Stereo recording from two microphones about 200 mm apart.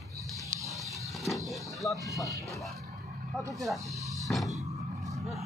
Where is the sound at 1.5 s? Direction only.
15° left (ahead or behind).